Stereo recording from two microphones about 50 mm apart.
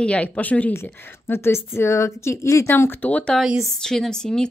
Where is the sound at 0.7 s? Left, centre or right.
Left.